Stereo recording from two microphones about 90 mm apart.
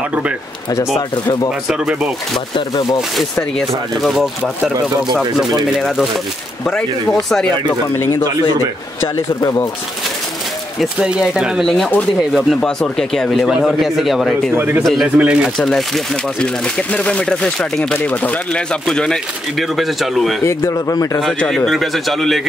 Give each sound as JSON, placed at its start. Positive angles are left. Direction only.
{"t": 1.1, "sound": "speech", "side_deg": 55}
{"t": 1.7, "sound": "speech", "side_deg": -5}
{"t": 5.8, "sound": "speech", "side_deg": 5}
{"t": 9.1, "sound": "speech", "side_deg": 35}
{"t": 10.8, "sound": "speech", "side_deg": -5}
{"t": 14.5, "sound": "speech", "side_deg": -25}
{"t": 15.1, "sound": "speech", "side_deg": -15}
{"t": 15.5, "sound": "speech", "side_deg": 0}
{"t": 17.9, "sound": "speech", "side_deg": 20}
{"t": 20.4, "sound": "speech", "side_deg": 30}
{"t": 21.4, "sound": "speech", "side_deg": 10}